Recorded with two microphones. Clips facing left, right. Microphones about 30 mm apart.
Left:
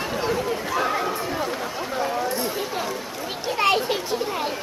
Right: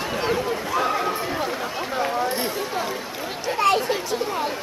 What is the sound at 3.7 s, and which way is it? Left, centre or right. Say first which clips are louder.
Children playing: right 1 dB; left.